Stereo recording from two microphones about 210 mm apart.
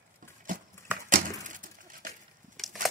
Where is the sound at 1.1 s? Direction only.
40° right (ahead or behind).